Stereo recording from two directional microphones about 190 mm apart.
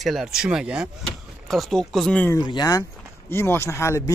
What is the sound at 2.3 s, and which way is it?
Speech, 20° left (ahead or behind).